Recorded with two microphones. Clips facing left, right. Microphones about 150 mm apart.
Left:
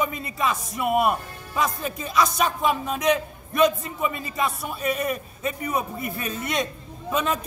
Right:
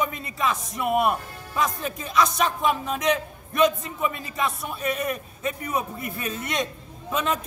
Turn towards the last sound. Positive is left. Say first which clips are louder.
# left 1 dB
turn(degrees=5)  # may be behind; listen again after turning